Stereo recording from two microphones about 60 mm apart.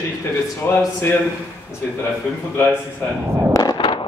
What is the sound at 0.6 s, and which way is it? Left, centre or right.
Speech, left.